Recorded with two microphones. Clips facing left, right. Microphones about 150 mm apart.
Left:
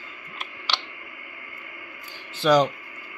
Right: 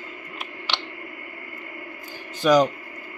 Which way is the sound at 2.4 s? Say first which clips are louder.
Right 1 dB; 10° right (ahead or behind).